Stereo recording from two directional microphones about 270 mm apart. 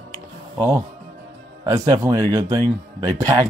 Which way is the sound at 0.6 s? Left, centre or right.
Centre.